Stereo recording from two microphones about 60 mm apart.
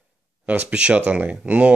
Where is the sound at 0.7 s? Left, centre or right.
Centre.